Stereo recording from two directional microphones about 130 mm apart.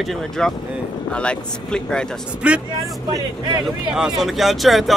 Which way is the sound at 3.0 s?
30° right (ahead or behind).